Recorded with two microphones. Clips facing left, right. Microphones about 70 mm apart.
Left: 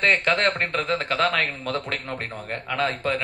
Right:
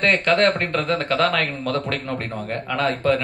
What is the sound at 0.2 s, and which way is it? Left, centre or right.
Speech, left.